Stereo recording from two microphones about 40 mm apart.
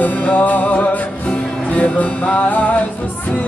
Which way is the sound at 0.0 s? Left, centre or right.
Left.